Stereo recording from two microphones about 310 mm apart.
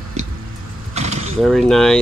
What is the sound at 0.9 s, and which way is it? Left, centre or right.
Mechanisms, right.